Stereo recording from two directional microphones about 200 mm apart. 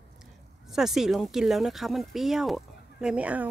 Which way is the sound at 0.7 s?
Centre (ahead or behind).